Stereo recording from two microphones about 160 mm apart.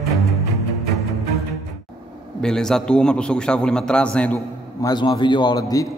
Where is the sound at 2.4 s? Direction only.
5° left (ahead or behind).